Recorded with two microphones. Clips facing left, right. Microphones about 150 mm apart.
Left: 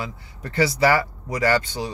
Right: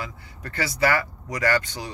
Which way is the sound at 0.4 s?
30° left (ahead or behind).